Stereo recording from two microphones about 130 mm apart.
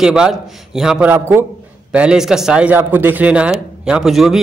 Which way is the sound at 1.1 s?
15° right (ahead or behind).